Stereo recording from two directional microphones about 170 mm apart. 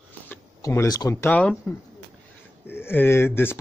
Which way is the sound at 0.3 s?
15° left (ahead or behind).